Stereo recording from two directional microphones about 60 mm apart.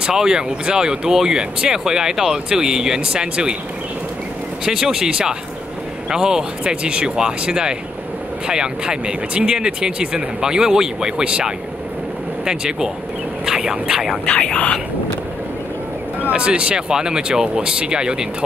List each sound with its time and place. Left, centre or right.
0.0 s speech: centre
4.6 s speech: centre
14.2 s speech: left
16.2 s speech: right